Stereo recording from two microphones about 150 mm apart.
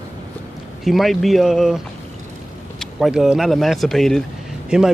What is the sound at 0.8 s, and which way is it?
Speech, centre (ahead or behind).